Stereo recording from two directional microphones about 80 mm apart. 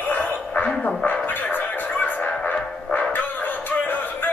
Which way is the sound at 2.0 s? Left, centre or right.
Left.